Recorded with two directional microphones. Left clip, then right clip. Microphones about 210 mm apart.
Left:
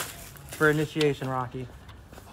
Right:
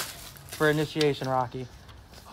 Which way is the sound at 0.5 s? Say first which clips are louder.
Left 1 dB; 40° right (ahead or behind).